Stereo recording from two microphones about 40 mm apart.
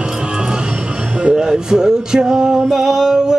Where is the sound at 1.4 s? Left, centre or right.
Centre.